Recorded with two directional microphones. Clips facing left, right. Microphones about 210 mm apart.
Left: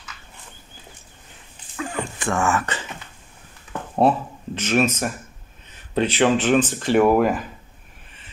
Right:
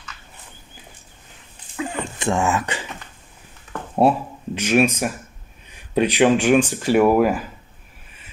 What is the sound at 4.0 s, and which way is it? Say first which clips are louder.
Speech: right 1 dB; 10° right (ahead or behind).